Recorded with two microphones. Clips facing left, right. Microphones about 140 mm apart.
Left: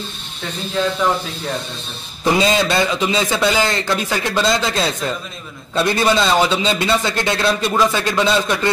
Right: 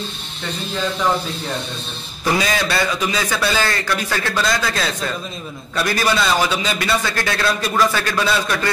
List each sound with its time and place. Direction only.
2.2 s a man's voice: 25° left (ahead or behind)